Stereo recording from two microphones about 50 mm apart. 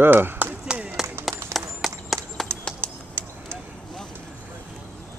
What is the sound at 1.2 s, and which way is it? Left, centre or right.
Clip-clop, right.